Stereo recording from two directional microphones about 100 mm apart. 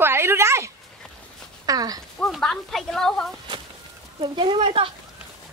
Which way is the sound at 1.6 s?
40° right (ahead or behind).